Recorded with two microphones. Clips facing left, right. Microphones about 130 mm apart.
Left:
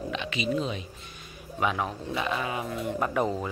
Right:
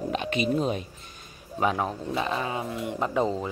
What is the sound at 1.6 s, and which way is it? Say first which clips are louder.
Speech: right 2 dB; 35° right (ahead or behind).